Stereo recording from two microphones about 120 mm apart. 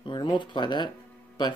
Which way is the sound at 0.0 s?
45° left (ahead or behind).